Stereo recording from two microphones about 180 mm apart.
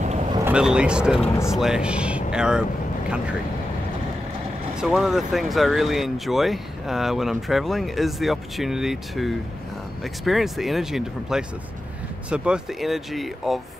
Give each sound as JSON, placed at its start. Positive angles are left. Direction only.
{"t": 0.5, "sound": "speech", "side_deg": -5}
{"t": 4.7, "sound": "speech", "side_deg": -5}